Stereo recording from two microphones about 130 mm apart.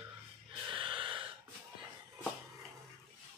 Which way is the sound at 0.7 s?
40° right (ahead or behind).